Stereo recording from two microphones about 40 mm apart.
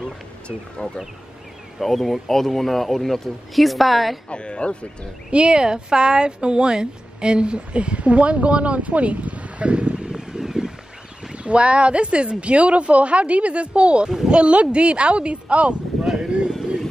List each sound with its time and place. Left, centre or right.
1.8 s a man's voice: centre
4.3 s speech: left
5.3 s speech: right
10.1 s wind: centre
11.3 s speech: right
14.0 s speech: centre; by 15.7 s right